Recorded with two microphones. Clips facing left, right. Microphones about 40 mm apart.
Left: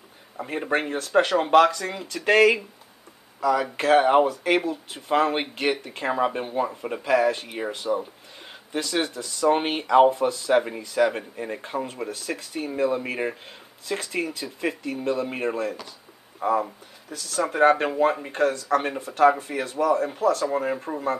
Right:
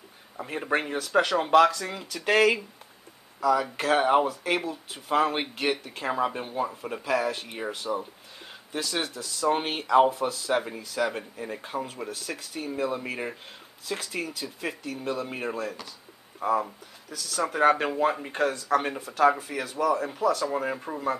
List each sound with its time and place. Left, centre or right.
0.4 s speech: centre
18.3 s speech: centre
18.8 s speech: centre